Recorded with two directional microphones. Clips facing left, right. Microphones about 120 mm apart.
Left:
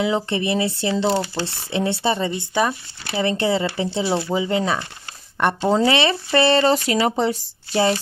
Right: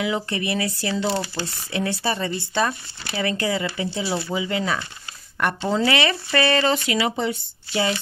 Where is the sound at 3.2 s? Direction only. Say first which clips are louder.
Left 4 dB; 30° left (ahead or behind).